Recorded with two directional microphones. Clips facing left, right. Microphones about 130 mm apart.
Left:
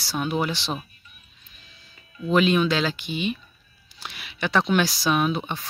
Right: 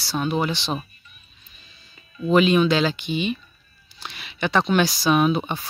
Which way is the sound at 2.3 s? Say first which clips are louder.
Right 3 dB; centre (ahead or behind).